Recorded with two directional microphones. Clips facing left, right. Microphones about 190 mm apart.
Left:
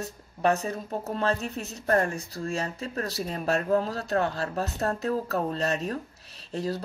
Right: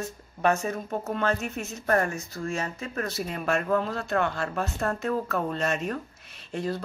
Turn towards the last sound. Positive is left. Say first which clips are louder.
# even
turn(degrees=40)  # may be behind; listen again after turning